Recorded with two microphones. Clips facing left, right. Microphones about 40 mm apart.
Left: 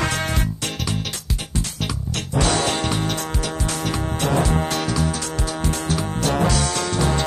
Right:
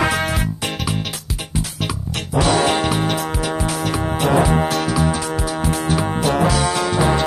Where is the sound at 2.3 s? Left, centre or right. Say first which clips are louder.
Right 5 dB; centre.